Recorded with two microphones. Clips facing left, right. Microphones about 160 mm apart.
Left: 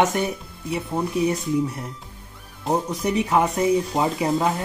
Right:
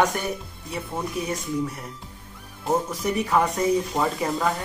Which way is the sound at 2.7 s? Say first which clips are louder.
Left 2 dB; 20° left (ahead or behind).